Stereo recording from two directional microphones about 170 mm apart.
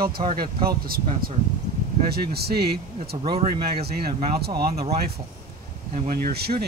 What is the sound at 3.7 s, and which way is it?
Speech, 65° right (ahead or behind).